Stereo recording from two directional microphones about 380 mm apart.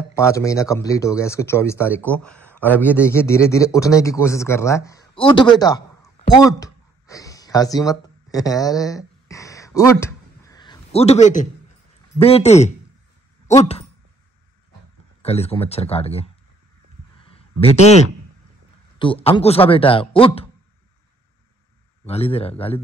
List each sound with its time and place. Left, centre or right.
0.1 s speech: centre
5.5 s a sound: centre
12.2 s speech: centre
15.2 s speech: centre
17.2 s a sound: centre
18.9 s speech: centre
22.0 s speech: centre